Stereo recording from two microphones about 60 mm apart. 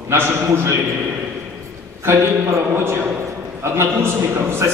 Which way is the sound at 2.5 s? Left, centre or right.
Right.